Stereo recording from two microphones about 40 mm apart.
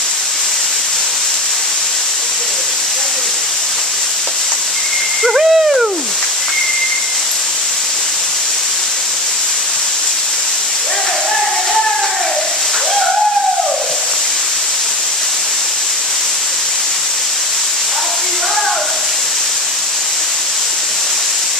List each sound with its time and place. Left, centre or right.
5.2 s owl: centre